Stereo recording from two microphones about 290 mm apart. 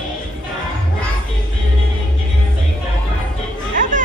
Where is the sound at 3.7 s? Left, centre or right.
Right.